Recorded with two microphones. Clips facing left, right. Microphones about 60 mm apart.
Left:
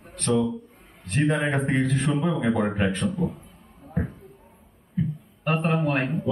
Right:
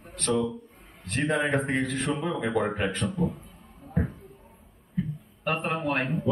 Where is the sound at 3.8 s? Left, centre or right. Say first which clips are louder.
Even; centre.